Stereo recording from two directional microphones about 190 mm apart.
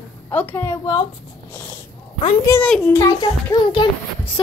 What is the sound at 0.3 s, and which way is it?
Speech, 10° left (ahead or behind).